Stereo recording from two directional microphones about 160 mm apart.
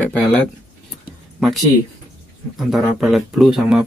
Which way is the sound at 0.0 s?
5° left (ahead or behind).